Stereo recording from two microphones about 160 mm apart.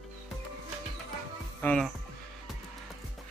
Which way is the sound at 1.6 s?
5° left (ahead or behind).